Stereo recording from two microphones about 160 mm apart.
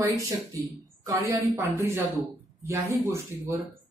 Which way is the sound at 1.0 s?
15° right (ahead or behind).